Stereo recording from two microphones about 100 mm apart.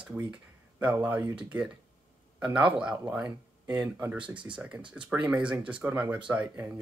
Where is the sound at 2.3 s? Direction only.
10° right (ahead or behind).